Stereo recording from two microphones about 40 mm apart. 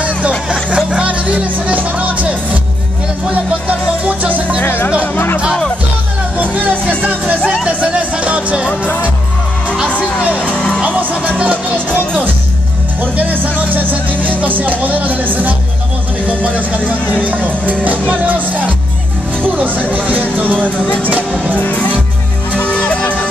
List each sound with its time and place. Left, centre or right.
0.7 s music: centre
1.0 s music: right
4.6 s music: left
6.3 s music: right
8.6 s music: left
9.8 s music: left
10.8 s music: right
13.0 s music: right
19.4 s music: right
21.5 s music: left